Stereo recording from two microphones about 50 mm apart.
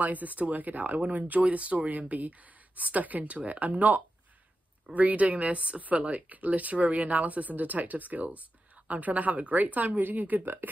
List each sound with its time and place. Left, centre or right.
0.0 s a woman's voice: right